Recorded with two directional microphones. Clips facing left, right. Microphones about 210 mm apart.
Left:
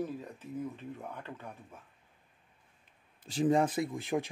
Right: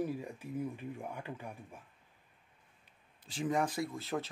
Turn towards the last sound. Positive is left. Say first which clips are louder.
# left 4 dB
turn(degrees=15)  # may be behind; listen again after turning